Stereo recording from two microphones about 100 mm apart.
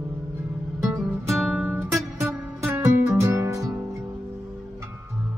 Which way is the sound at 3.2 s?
30° right (ahead or behind).